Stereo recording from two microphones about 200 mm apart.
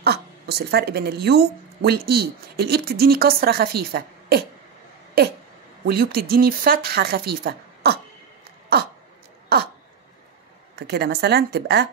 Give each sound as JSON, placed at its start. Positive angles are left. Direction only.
{"t": 0.0, "sound": "a woman's voice", "side_deg": -55}
{"t": 8.7, "sound": "a sound", "side_deg": -55}
{"t": 10.8, "sound": "speech", "side_deg": -55}